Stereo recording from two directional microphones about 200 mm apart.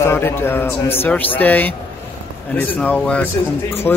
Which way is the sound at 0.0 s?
10° left (ahead or behind).